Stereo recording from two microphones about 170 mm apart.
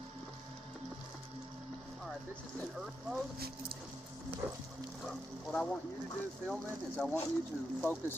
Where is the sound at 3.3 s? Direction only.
65° right (ahead or behind).